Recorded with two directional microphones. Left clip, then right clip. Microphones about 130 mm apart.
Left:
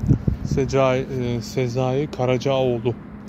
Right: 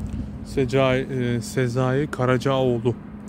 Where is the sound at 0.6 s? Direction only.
20° right (ahead or behind); by 3.0 s 35° right (ahead or behind).